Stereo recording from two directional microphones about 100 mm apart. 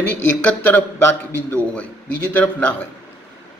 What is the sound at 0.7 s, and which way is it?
A man's voice, 20° left (ahead or behind).